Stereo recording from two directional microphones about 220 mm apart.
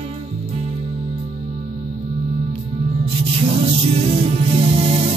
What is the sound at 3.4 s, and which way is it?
Music, 30° right (ahead or behind).